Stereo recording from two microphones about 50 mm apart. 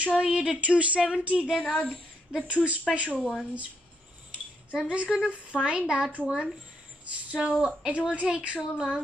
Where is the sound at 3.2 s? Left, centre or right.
Centre.